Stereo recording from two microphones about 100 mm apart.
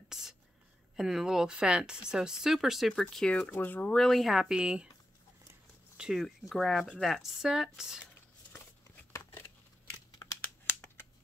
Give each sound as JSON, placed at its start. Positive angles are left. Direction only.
{"t": 0.1, "sound": "whispering", "side_deg": -5}
{"t": 0.9, "sound": "speech", "side_deg": -5}
{"t": 3.4, "sound": "speech", "side_deg": 20}
{"t": 5.9, "sound": "speech", "side_deg": 0}
{"t": 9.8, "sound": "tearing", "side_deg": 35}